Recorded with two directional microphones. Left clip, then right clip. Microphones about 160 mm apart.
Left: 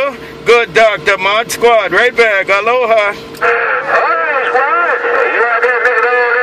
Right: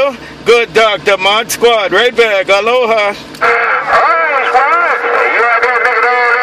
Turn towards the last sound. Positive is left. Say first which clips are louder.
# right 1 dB
turn(degrees=-55)  # may be behind; listen again after turning